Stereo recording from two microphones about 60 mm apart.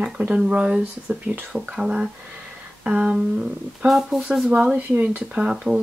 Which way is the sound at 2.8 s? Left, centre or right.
Centre.